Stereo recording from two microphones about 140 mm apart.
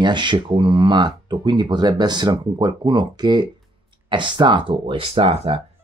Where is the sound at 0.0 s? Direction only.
35° right (ahead or behind).